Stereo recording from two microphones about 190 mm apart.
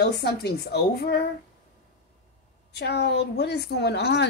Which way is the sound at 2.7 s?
60° left (ahead or behind).